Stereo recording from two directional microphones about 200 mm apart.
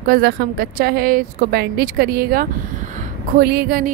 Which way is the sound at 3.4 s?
50° right (ahead or behind).